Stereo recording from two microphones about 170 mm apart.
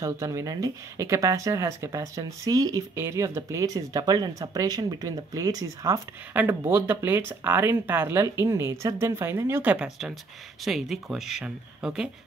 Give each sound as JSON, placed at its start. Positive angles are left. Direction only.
{"t": 0.0, "sound": "speech", "side_deg": -20}